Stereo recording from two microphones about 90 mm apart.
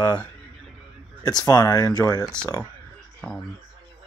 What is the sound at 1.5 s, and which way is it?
Speech, 45° left (ahead or behind).